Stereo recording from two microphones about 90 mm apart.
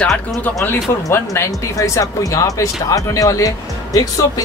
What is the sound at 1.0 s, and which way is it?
Speech, 30° left (ahead or behind).